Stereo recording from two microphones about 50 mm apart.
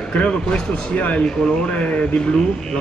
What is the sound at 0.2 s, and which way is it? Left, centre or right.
Speech, left.